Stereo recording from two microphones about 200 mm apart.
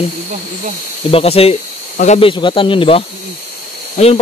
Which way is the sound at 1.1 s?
30° left (ahead or behind).